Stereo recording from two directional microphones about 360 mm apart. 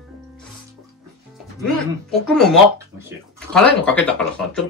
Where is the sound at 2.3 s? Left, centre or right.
Centre.